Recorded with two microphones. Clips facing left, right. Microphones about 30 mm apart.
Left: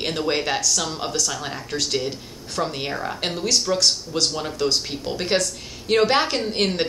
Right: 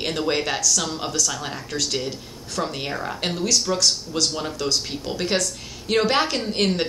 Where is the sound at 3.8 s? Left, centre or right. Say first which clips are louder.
Left 1 dB; left.